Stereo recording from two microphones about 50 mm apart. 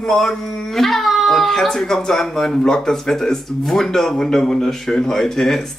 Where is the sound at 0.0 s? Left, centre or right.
Centre.